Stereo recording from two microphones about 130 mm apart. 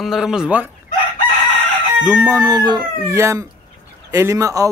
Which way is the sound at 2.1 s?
25° right (ahead or behind).